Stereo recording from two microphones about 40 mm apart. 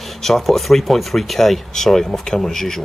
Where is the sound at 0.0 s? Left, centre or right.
Centre.